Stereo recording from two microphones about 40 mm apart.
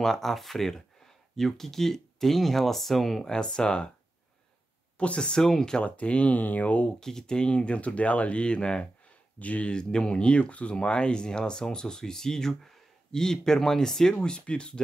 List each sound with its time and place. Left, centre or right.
0.0 s speech: centre
3.3 s speech: left
4.9 s speech: left
5.4 s speech: centre
5.8 s speech: left
7.0 s speech: centre
9.4 s speech: left
9.7 s speech: centre
14.1 s speech: left